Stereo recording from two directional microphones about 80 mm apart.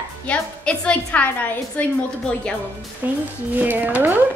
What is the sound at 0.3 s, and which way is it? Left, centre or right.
A woman's voice, centre.